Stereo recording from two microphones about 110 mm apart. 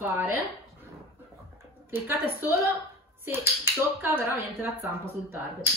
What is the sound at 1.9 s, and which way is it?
Speech, 20° right (ahead or behind).